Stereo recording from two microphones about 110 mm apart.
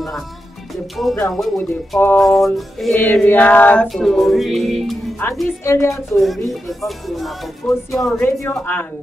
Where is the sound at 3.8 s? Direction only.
Centre (ahead or behind).